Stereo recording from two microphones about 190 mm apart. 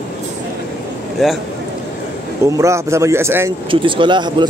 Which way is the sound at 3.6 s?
25° right (ahead or behind).